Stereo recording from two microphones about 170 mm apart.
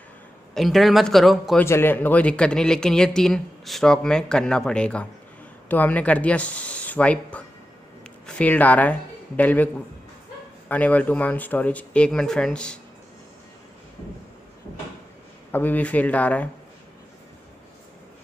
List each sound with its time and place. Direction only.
0.6 s speech: centre (ahead or behind)
1.6 s speech: 10° left (ahead or behind)
10.7 s speech: 10° left (ahead or behind)
15.5 s speech: 10° left (ahead or behind)